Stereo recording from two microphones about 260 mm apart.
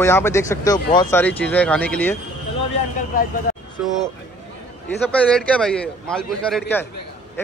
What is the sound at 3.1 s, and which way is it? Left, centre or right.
Speech, left.